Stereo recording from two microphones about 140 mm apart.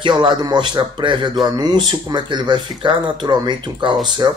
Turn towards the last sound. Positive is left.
turn(degrees=-30)  # may be behind; listen again after turning